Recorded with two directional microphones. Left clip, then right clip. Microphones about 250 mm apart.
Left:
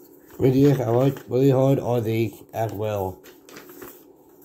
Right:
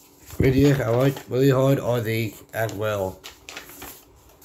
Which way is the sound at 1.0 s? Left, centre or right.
Centre.